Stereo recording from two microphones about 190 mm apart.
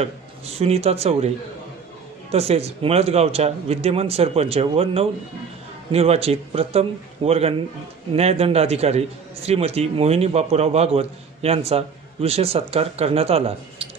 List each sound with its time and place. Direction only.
0.0 s a man's voice: 30° right (ahead or behind)
2.3 s a man's voice: 35° right (ahead or behind)